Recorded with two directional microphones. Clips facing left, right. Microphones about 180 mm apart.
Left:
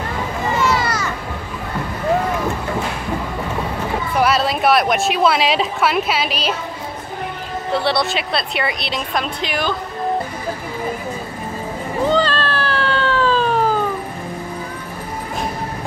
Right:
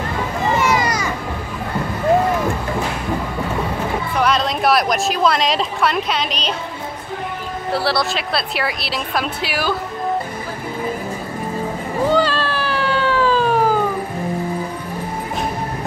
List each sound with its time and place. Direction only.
0.6 s children playing: 15° right (ahead or behind)
4.2 s a woman's voice: 5° left (ahead or behind)
7.7 s a woman's voice: centre (ahead or behind)
12.1 s cat: 10° right (ahead or behind)